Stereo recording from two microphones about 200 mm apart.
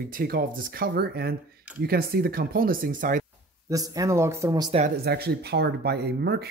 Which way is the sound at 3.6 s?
15° right (ahead or behind).